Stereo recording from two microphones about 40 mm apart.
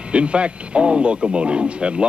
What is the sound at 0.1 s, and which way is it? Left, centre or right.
Speech, right.